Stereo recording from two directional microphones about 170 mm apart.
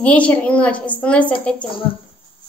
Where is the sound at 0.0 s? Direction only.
5° left (ahead or behind).